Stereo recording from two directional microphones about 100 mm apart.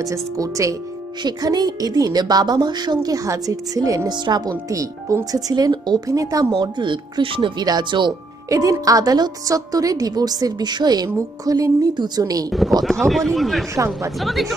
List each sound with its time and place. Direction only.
0.0 s a woman's voice: 35° right (ahead or behind)
1.2 s a woman's voice: 45° right (ahead or behind)
4.1 s a woman's voice: 45° right (ahead or behind)
6.5 s speech: 50° right (ahead or behind)
8.5 s a woman's voice: 35° right (ahead or behind)
12.4 s speech: centre (ahead or behind)
13.7 s a woman's voice: 30° right (ahead or behind)
14.2 s speech: centre (ahead or behind)